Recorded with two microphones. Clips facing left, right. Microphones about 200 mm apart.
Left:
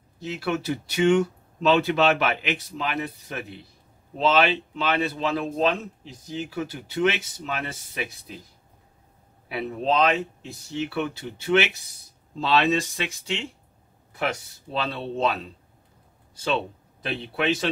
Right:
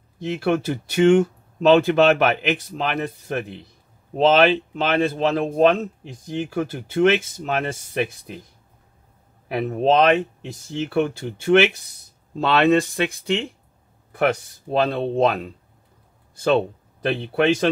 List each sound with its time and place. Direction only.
0.2 s speech: 50° right (ahead or behind)
9.5 s speech: 50° right (ahead or behind)